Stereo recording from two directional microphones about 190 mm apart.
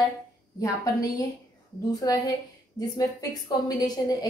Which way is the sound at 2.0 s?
20° left (ahead or behind).